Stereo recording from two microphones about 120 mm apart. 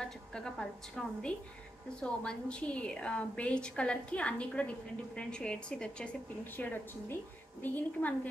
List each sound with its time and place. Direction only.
0.0 s a woman's voice: 5° left (ahead or behind)